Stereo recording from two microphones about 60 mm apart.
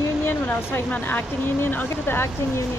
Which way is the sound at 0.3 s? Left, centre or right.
Left.